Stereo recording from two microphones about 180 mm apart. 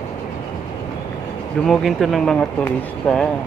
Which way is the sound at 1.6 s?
Centre (ahead or behind).